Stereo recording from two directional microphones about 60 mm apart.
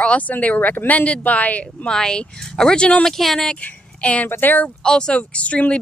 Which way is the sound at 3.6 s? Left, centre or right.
Left.